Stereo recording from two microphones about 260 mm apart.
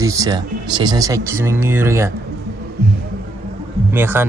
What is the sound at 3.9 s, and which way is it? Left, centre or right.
Speech, centre.